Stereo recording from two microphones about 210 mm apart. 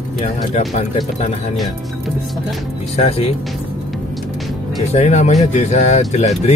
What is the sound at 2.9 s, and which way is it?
Speech, 30° left (ahead or behind).